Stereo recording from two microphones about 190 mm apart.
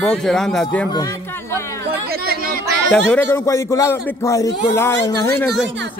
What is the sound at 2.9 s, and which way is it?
A man's voice, 10° left (ahead or behind).